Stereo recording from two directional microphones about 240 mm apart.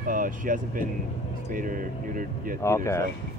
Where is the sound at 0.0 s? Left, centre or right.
Right.